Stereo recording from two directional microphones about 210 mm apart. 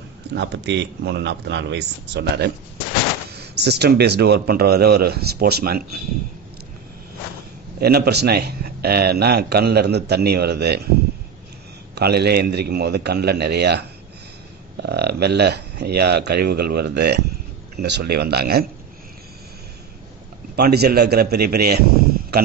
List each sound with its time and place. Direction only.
0.3 s a man's voice: 50° right (ahead or behind)
7.8 s a man's voice: 50° right (ahead or behind)
11.9 s a man's voice: 50° right (ahead or behind)
20.5 s a man's voice: 50° right (ahead or behind)